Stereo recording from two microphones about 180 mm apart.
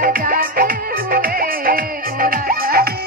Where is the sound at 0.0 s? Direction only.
50° right (ahead or behind).